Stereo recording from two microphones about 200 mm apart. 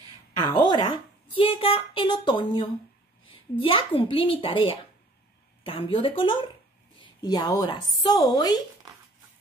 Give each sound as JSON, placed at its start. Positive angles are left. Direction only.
{"t": 0.4, "sound": "a woman's voice", "side_deg": 20}